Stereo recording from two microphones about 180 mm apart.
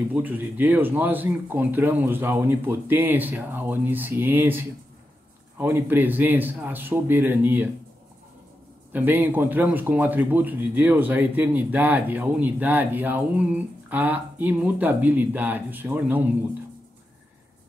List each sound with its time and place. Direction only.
0.1 s a man's voice: 10° right (ahead or behind)
8.9 s a man's voice: 10° right (ahead or behind)